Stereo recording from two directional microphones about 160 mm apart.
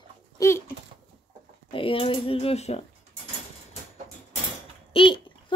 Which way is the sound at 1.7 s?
35° left (ahead or behind).